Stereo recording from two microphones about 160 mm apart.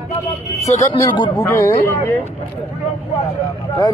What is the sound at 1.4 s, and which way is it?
Speech, 15° left (ahead or behind).